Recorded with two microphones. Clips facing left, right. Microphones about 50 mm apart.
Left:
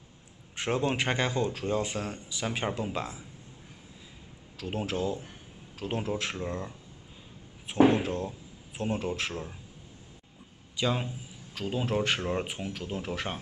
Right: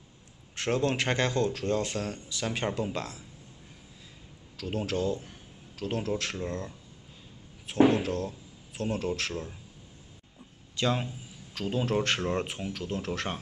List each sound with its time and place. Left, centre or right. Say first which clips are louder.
0.6 s speech: right 1 dB; centre
4.6 s speech: right 1 dB; centre
10.8 s a man's voice: right 1 dB; centre